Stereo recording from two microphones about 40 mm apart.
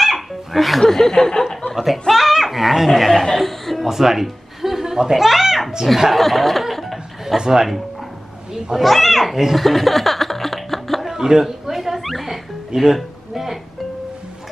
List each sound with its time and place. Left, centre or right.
0.0 s laughter: centre
1.8 s speech: centre
2.9 s speech: centre
3.9 s music: centre
6.1 s speech: centre
6.6 s chuckle: centre
7.3 s speech: centre
9.7 s music: centre
11.1 s music: centre